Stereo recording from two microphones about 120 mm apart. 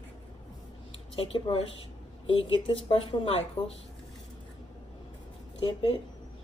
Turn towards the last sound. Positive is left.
turn(degrees=50)  # may be behind; listen again after turning